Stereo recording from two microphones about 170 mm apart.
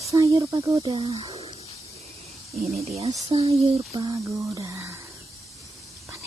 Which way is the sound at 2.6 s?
40° right (ahead or behind).